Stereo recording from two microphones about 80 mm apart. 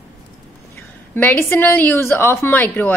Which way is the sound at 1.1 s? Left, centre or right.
Left.